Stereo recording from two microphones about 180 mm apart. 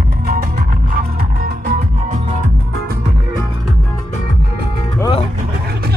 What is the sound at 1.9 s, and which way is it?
Music, 40° right (ahead or behind).